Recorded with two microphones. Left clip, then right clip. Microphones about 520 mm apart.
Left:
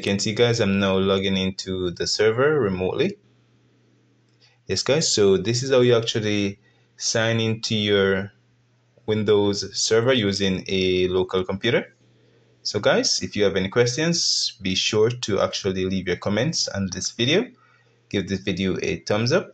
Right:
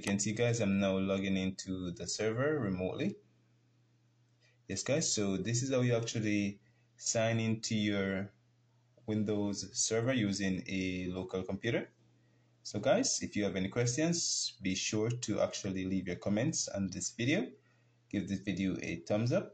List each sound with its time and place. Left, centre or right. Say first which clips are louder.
0.0 s speech: left 13 dB; right
4.6 s speech: left 13 dB; right